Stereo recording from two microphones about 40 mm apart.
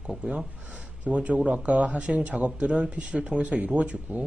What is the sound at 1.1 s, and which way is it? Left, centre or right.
A man's voice, right.